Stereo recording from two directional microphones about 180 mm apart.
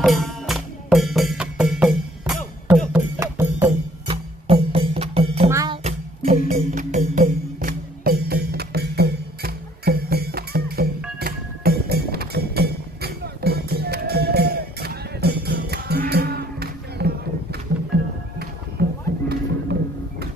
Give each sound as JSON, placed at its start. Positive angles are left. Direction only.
{"t": 0.0, "sound": "music", "side_deg": 0}
{"t": 4.1, "sound": "music", "side_deg": -30}
{"t": 5.5, "sound": "music", "side_deg": -20}
{"t": 5.9, "sound": "music", "side_deg": -45}